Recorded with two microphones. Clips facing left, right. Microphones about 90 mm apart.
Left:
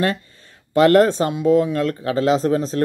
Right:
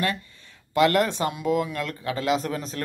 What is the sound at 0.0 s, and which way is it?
Speech, 35° left (ahead or behind).